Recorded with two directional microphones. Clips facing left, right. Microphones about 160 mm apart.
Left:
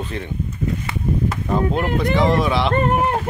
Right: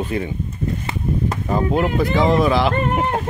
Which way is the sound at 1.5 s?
Centre (ahead or behind).